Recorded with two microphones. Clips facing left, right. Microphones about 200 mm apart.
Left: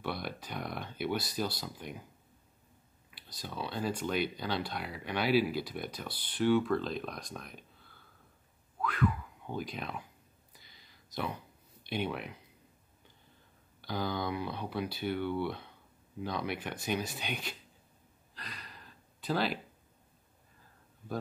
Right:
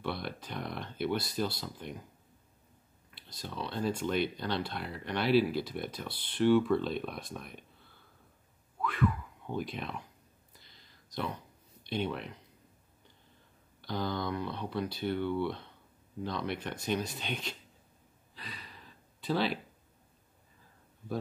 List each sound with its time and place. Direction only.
0.0 s speech: centre (ahead or behind)
3.2 s a sound: 25° right (ahead or behind)
3.4 s speech: 5° left (ahead or behind)
8.8 s speech: centre (ahead or behind)
11.1 s speech: 5° left (ahead or behind)
13.7 s speech: 5° left (ahead or behind)
18.3 s gasp: centre (ahead or behind)